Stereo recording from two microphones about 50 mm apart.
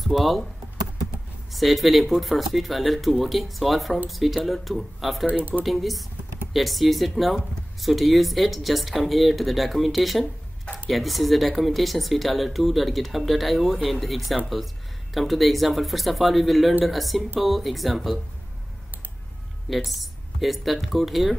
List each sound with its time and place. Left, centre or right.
0.0 s speech: centre
1.5 s speech: centre
5.2 s speech: right
5.7 s speech: centre
19.7 s speech: centre